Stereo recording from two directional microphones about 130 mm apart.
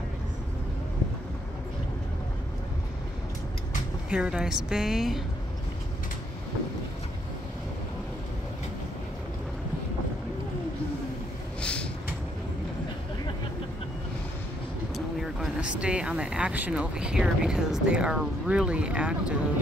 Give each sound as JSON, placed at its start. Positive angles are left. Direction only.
{"t": 4.1, "sound": "a woman's voice", "side_deg": -5}
{"t": 11.6, "sound": "a sound", "side_deg": 10}
{"t": 15.0, "sound": "speech", "side_deg": 0}